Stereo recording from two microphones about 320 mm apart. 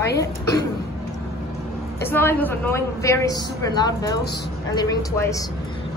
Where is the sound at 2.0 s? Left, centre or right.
Centre.